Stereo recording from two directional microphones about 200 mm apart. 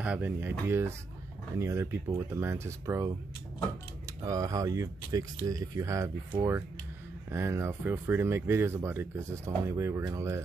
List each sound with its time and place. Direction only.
0.0 s speech: 10° right (ahead or behind)
4.2 s speech: 15° right (ahead or behind)
7.2 s speech: 15° right (ahead or behind)